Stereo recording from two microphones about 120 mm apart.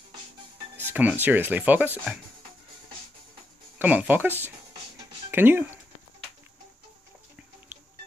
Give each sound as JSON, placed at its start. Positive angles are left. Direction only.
{"t": 0.7, "sound": "speech", "side_deg": -15}
{"t": 3.7, "sound": "speech", "side_deg": -15}